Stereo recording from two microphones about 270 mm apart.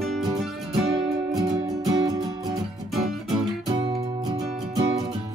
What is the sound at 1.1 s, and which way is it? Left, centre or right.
Music, centre.